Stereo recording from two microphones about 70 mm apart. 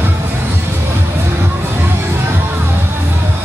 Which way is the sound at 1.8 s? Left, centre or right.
Right.